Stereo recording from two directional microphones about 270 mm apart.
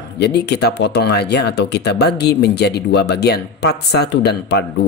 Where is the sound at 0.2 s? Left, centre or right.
Left.